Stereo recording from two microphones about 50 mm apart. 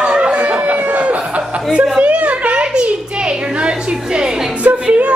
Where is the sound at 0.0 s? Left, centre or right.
Right.